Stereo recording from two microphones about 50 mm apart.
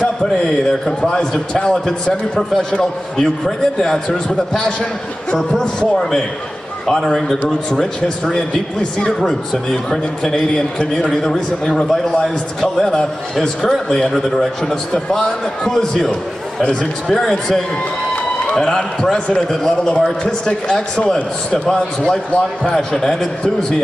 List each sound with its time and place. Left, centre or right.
0.0 s a man's voice: centre
18.6 s a man's voice: centre
22.3 s a man's voice: left
22.8 s a man's voice: centre